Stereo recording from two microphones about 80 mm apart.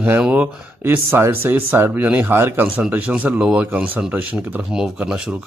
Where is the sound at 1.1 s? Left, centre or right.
Right.